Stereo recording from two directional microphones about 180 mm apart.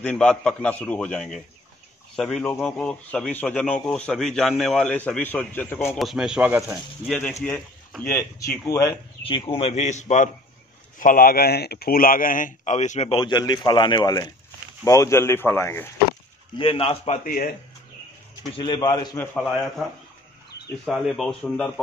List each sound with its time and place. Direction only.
0.0 s a man's voice: 5° left (ahead or behind)
5.9 s a man's voice: centre (ahead or behind)
8.0 s speech: 15° left (ahead or behind)
9.2 s a man's voice: 30° left (ahead or behind)
13.2 s speech: 25° left (ahead or behind)
16.5 s a man's voice: 30° left (ahead or behind)
17.3 s a man's voice: 50° left (ahead or behind)
18.6 s speech: 25° left (ahead or behind)
19.3 s a man's voice: centre (ahead or behind)
20.8 s a man's voice: 5° left (ahead or behind)